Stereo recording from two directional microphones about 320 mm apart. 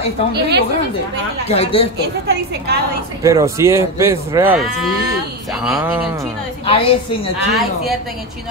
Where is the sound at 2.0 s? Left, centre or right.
Right.